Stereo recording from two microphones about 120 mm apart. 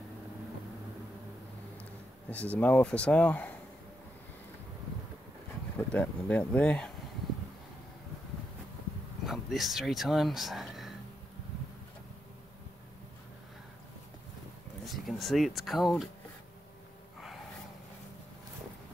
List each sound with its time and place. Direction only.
2.2 s speech: 15° left (ahead or behind)
5.8 s speech: 15° left (ahead or behind)
9.2 s speech: centre (ahead or behind)
14.9 s speech: centre (ahead or behind)